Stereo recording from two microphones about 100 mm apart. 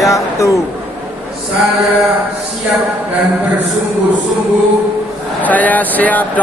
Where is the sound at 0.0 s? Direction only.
30° left (ahead or behind).